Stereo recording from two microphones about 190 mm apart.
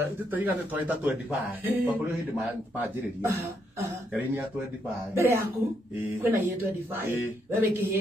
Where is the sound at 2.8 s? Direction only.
10° right (ahead or behind).